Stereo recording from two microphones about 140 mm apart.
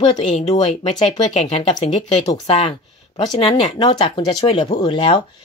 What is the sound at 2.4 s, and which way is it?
Speech, 40° left (ahead or behind).